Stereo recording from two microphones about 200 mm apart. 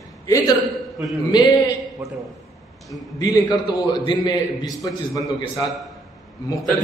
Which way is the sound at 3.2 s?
20° left (ahead or behind).